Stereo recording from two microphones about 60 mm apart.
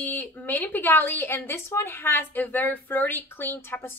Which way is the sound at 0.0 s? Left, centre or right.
Left.